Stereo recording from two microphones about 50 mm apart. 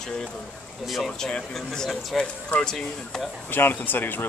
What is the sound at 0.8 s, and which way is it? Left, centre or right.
Speech, centre.